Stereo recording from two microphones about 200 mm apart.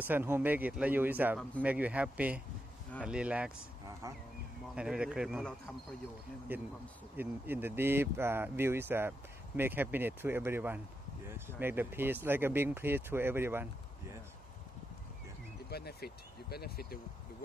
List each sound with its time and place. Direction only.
0.1 s speech: 10° right (ahead or behind)
4.7 s speech: 5° right (ahead or behind)
6.5 s speech: 10° right (ahead or behind)
15.7 s speech: 50° left (ahead or behind)